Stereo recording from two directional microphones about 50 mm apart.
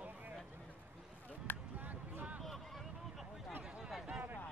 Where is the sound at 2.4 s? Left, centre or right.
Centre.